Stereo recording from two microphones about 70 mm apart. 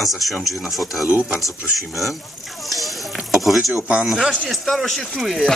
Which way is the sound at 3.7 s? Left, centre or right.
Right.